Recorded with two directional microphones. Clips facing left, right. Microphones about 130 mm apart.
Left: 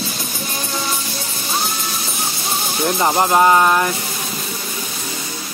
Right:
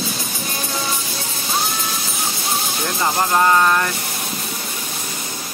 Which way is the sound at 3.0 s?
20° left (ahead or behind).